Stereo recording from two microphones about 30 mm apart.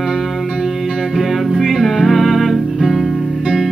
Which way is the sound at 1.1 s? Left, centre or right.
Centre.